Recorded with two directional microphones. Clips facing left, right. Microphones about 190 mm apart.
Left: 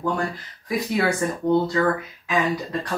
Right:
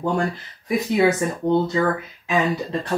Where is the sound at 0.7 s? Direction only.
20° right (ahead or behind).